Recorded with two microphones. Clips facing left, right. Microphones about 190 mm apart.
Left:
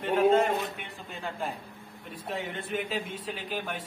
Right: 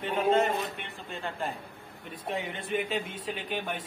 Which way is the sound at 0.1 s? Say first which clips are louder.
Left 3 dB; 10° left (ahead or behind).